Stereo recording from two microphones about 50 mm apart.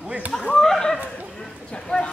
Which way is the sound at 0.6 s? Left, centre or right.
Centre.